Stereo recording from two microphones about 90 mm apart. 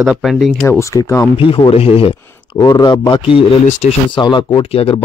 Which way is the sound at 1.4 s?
80° left.